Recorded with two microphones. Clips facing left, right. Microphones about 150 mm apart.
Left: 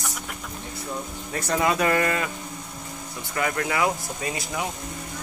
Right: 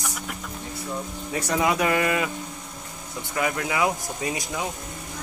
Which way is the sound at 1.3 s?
10° right (ahead or behind).